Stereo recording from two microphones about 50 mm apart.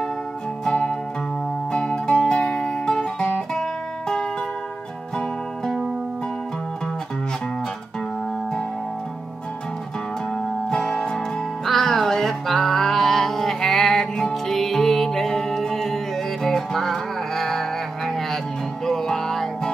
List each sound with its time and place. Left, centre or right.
0.7 s music: centre
10.3 s music: centre